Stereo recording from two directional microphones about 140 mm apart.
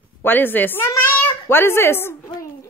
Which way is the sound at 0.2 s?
15° left (ahead or behind).